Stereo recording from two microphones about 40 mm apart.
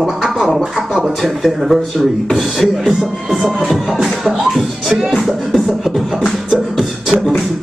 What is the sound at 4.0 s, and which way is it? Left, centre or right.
Beatboxing, centre.